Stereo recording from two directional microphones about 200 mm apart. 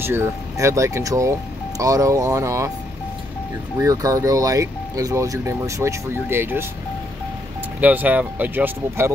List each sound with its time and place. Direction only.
0.0 s speech: 10° right (ahead or behind)
3.7 s speech: 15° right (ahead or behind)
7.8 s speech: 10° right (ahead or behind)